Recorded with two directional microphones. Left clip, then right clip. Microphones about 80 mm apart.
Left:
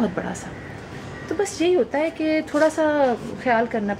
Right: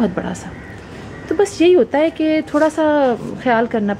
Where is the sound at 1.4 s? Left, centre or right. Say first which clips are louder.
Right 8 dB; right.